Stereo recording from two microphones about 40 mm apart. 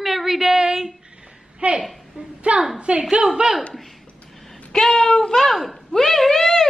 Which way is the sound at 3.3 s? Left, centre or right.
Centre.